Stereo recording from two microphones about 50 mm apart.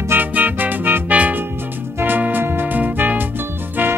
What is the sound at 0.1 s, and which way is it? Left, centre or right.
Music, right.